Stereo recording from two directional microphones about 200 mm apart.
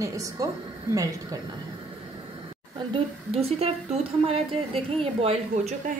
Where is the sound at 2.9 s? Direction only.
30° right (ahead or behind).